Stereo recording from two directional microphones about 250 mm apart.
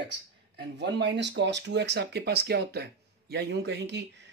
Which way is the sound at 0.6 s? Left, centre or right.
Right.